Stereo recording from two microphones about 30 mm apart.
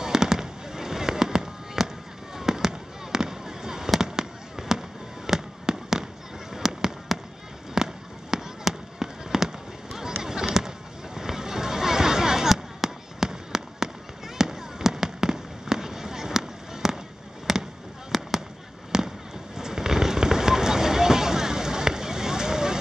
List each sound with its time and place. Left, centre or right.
0.0 s fireworks: centre
7.1 s fireworks: centre
7.7 s fireworks: centre
18.9 s fireworks: centre